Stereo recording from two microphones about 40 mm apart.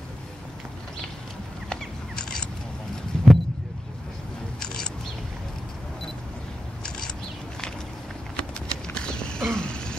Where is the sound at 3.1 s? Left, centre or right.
Centre.